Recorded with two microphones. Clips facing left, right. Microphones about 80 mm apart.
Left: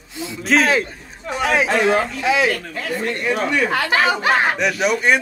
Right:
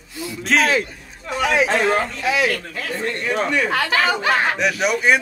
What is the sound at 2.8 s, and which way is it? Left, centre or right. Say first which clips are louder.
Speech: left 2 dB; centre.